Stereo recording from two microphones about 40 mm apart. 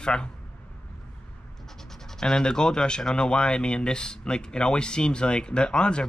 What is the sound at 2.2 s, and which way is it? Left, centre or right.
Speech, centre.